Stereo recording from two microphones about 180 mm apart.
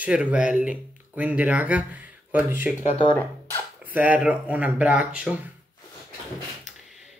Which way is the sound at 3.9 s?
10° right (ahead or behind).